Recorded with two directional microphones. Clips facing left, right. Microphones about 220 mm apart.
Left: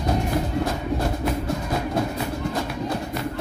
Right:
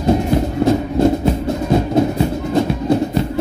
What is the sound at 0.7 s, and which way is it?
Music, 25° right (ahead or behind).